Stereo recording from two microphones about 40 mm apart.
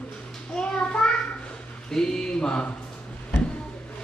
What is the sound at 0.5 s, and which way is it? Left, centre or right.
Child singing, left.